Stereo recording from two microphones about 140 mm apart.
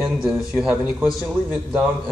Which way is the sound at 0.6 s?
Centre (ahead or behind).